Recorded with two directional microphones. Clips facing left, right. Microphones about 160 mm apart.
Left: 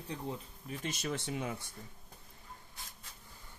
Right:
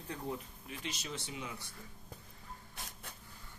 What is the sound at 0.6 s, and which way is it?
Speech, 50° left (ahead or behind).